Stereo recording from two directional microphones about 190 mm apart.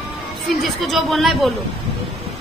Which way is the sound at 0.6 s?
Centre (ahead or behind).